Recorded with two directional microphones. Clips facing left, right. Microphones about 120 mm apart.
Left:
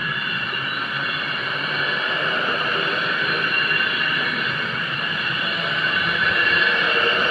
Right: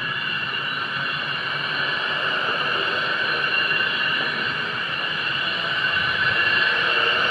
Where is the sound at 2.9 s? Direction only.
15° right (ahead or behind).